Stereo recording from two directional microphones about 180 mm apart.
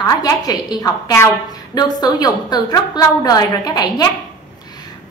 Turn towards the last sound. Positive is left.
turn(degrees=20)  # may be behind; listen again after turning